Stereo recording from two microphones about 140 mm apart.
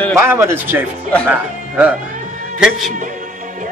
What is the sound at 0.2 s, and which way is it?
Speech, 20° right (ahead or behind).